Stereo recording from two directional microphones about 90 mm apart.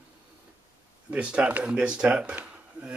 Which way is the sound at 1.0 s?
10° right (ahead or behind).